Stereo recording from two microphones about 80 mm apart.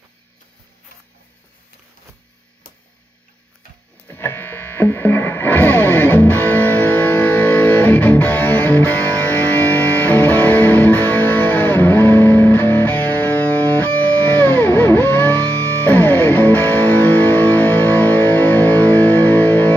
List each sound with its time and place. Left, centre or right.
4.1 s music: left